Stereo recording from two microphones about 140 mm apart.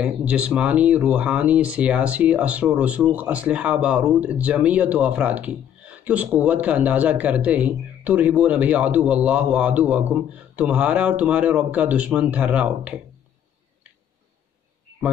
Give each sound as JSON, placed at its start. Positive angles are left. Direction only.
{"t": 0.0, "sound": "speech", "side_deg": -10}